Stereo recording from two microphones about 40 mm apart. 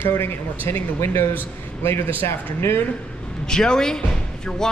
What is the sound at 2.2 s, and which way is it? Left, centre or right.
Speech, left.